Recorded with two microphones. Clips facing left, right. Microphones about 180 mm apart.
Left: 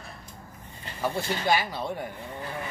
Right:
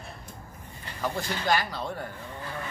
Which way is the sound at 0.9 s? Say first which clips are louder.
Left 2 dB; 10° left (ahead or behind).